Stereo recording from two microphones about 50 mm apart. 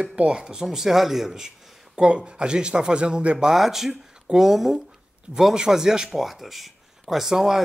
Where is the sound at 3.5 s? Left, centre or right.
Centre.